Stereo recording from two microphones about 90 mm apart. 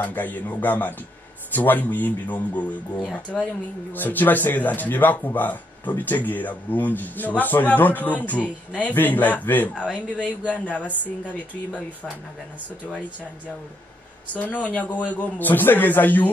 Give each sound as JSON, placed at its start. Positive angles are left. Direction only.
{"t": 0.0, "sound": "a man's voice", "side_deg": 20}
{"t": 14.3, "sound": "a man's voice", "side_deg": 15}